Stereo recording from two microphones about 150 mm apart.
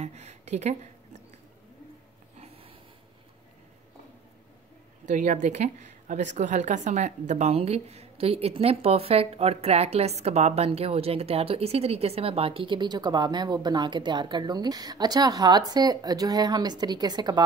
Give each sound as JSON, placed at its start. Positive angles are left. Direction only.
{"t": 0.0, "sound": "speech", "side_deg": -50}
{"t": 2.3, "sound": "snort", "side_deg": -45}
{"t": 5.0, "sound": "a woman's voice", "side_deg": -60}